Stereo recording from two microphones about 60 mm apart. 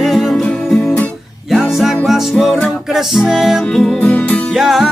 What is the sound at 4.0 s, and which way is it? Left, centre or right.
Music, left.